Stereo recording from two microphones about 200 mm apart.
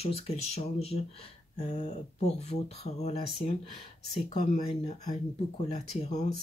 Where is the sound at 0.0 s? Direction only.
30° left (ahead or behind).